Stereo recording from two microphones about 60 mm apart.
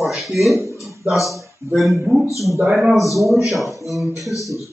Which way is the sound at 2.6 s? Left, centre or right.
Centre.